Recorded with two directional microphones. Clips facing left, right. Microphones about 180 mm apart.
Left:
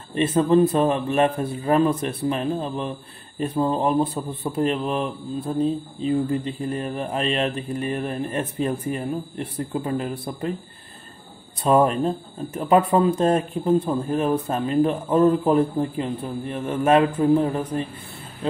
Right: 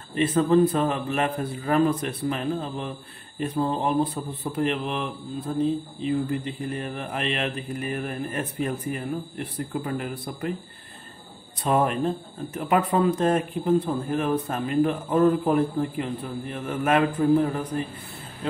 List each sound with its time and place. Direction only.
0.1 s speech: 30° left (ahead or behind)
4.0 s speech: 25° left (ahead or behind)
11.6 s speech: 30° left (ahead or behind)